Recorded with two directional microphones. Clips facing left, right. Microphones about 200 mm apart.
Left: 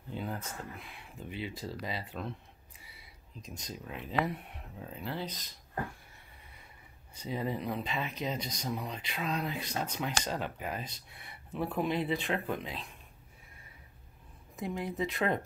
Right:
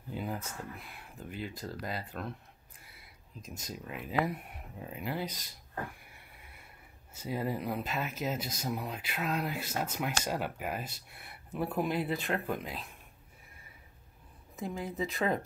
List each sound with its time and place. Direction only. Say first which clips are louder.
0.1 s speech: right 1 dB; 5° right (ahead or behind)
3.3 s speech: right 1 dB; 5° right (ahead or behind)
7.2 s speech: right 1 dB; 5° right (ahead or behind)
14.6 s speech: left 1 dB; centre (ahead or behind)